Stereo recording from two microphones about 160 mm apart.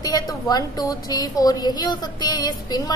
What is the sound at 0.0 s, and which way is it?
A woman's voice, 25° left (ahead or behind).